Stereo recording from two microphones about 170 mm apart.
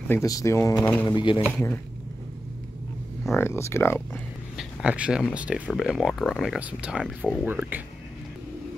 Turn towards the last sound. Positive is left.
turn(degrees=-10)  # may be behind; listen again after turning